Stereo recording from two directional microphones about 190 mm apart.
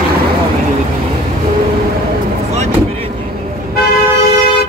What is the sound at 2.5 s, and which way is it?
Vehicle, 35° right (ahead or behind).